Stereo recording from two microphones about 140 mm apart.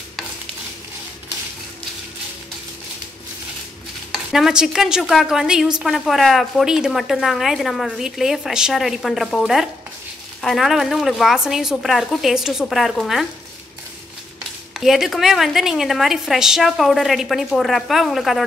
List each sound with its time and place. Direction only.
4.1 s a woman's voice: centre (ahead or behind)
14.8 s a woman's voice: centre (ahead or behind)